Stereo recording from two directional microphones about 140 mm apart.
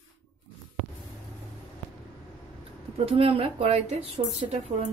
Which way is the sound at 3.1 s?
45° right (ahead or behind).